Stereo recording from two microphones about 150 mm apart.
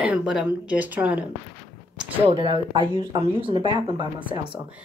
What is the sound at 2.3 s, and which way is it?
Speech, 35° right (ahead or behind).